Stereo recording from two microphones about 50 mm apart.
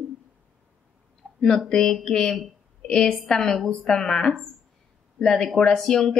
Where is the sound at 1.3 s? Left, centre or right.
Centre.